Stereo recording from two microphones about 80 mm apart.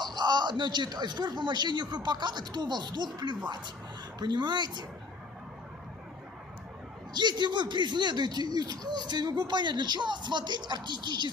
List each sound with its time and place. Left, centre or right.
0.0 s speech: right
7.2 s speech: right